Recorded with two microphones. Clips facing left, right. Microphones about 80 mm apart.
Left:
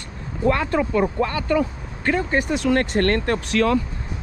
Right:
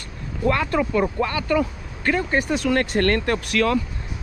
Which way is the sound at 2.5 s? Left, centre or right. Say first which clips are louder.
Left 2 dB; left.